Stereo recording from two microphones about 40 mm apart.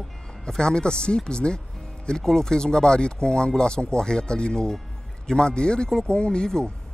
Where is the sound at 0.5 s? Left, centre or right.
Centre.